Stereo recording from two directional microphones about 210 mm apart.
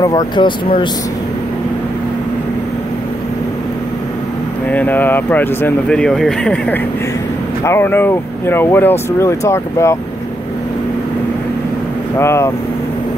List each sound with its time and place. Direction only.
0.0 s speech: 15° left (ahead or behind)
4.6 s speech: 5° left (ahead or behind)
12.2 s speech: 15° left (ahead or behind)